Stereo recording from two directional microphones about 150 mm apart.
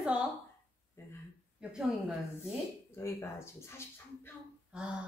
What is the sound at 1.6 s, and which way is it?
Speech, 5° right (ahead or behind).